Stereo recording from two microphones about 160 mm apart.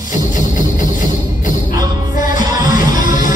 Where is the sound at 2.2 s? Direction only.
55° left (ahead or behind).